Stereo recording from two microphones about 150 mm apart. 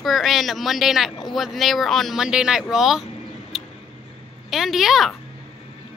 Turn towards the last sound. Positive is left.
turn(degrees=0)  # may be behind; listen again after turning